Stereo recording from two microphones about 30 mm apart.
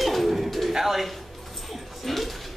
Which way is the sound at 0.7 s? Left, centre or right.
Centre.